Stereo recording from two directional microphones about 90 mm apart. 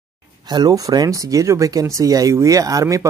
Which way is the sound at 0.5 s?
45° right (ahead or behind).